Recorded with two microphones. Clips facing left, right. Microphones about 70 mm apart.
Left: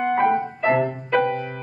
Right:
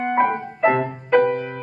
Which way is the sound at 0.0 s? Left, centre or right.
Centre.